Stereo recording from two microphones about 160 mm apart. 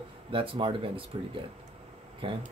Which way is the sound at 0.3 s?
35° right (ahead or behind).